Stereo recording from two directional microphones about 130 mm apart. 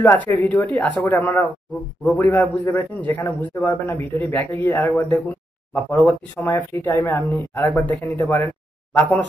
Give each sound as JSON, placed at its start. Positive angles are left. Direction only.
{"t": 0.0, "sound": "a man's voice", "side_deg": 15}